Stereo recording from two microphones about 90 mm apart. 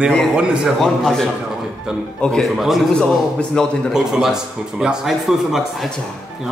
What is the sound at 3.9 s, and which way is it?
A man's voice, 5° right (ahead or behind).